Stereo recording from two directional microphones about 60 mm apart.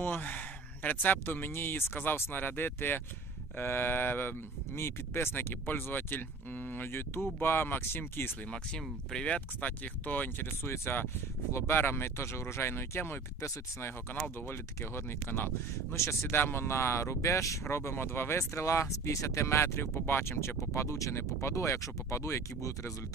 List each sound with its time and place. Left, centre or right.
0.0 s speech: left
8.5 s speech: centre; by 17.6 s left
17.6 s speech: left